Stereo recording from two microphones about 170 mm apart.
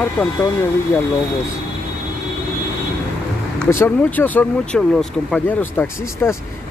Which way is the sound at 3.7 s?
10° left (ahead or behind).